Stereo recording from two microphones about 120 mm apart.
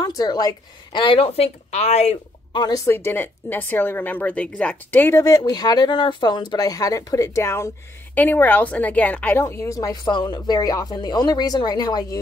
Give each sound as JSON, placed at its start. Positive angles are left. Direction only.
{"t": 0.0, "sound": "a woman's voice", "side_deg": 35}
{"t": 2.5, "sound": "a woman's voice", "side_deg": 35}
{"t": 5.2, "sound": "speech", "side_deg": 30}